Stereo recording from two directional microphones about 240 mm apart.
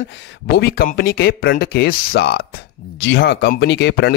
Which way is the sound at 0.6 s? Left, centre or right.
Left.